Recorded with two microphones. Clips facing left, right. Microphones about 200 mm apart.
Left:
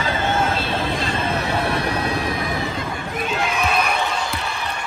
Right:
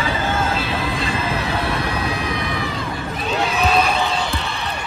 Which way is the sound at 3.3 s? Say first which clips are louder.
Right 4 dB; 30° right (ahead or behind).